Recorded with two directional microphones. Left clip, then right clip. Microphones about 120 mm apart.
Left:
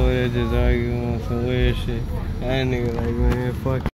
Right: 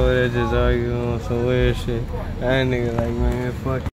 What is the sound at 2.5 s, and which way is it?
Speech, 45° right (ahead or behind).